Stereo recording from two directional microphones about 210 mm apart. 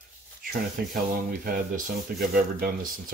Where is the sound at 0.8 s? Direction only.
45° right (ahead or behind).